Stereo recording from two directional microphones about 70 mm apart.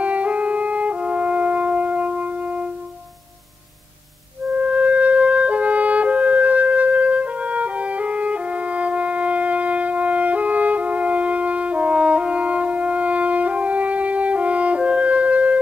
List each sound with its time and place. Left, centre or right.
0.0 s music: centre
4.6 s music: centre